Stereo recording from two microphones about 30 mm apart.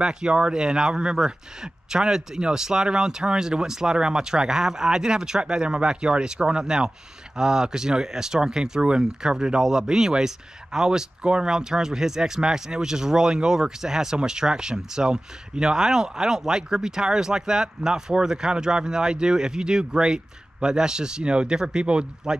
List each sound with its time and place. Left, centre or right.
0.0 s speech: right